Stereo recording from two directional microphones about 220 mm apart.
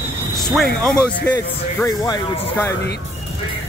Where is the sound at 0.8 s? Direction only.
5° left (ahead or behind).